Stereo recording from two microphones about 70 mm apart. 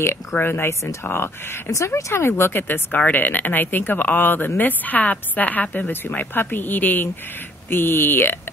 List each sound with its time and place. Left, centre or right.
0.0 s speech: left